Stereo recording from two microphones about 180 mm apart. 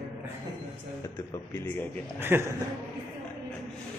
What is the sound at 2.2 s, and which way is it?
Speech, 10° right (ahead or behind).